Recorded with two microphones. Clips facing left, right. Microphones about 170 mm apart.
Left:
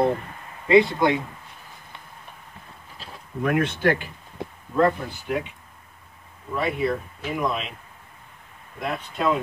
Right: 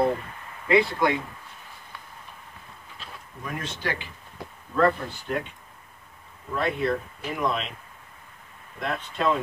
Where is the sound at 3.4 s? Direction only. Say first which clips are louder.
Left 11 dB; 65° left (ahead or behind).